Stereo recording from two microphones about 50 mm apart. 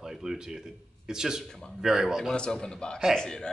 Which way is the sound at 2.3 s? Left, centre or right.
Centre.